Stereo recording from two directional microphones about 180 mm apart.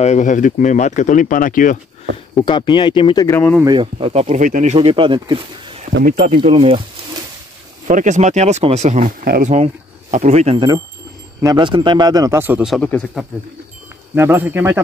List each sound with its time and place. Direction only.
0.0 s speech: 40° left (ahead or behind)
2.3 s speech: 25° left (ahead or behind)
3.3 s speech: 10° left (ahead or behind)
3.6 s speech: 30° right (ahead or behind)
6.0 s speech: 40° right (ahead or behind)
7.9 s speech: 45° right (ahead or behind)
11.4 s a man's voice: 25° right (ahead or behind); by 13.2 s 5° left (ahead or behind)
14.1 s a man's voice: 10° right (ahead or behind)